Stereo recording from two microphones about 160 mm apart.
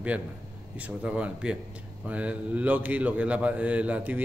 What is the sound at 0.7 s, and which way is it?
Speech, 5° right (ahead or behind).